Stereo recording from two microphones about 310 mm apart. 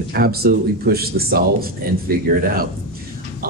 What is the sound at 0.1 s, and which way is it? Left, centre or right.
Speech, right.